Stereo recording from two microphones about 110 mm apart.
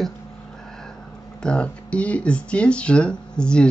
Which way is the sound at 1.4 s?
10° left (ahead or behind).